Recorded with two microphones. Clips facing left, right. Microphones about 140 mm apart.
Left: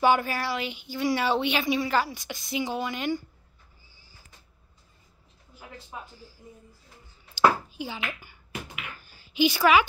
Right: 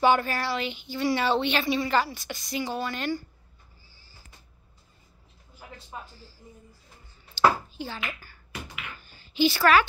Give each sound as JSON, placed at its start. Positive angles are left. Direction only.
{"t": 0.0, "sound": "speech", "side_deg": 10}
{"t": 2.6, "sound": "speech", "side_deg": 15}
{"t": 5.9, "sound": "speech", "side_deg": 5}
{"t": 7.7, "sound": "a sound", "side_deg": 10}
{"t": 9.6, "sound": "speech", "side_deg": 15}